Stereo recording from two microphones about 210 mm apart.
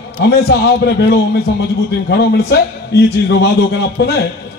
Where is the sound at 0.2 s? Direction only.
50° left (ahead or behind).